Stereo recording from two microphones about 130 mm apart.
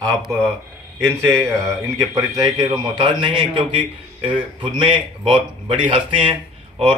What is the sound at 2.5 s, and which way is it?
A man's voice, 35° right (ahead or behind).